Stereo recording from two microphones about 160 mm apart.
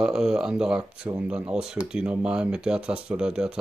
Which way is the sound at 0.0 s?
5° right (ahead or behind).